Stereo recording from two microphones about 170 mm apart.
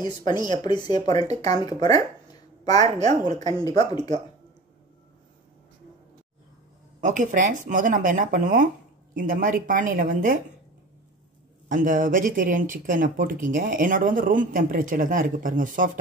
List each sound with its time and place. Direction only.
0.0 s speech: 25° left (ahead or behind)
7.0 s speech: 45° right (ahead or behind)
11.7 s speech: 50° right (ahead or behind)